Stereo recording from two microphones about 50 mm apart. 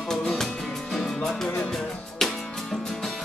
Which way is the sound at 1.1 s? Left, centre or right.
Centre.